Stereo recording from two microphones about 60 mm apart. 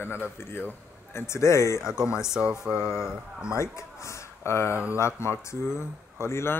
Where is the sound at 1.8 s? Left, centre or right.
Centre.